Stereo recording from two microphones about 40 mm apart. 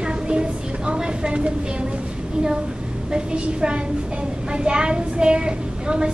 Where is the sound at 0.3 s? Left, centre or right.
Right.